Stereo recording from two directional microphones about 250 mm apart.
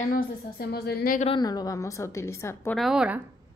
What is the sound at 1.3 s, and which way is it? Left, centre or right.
A woman's voice, centre.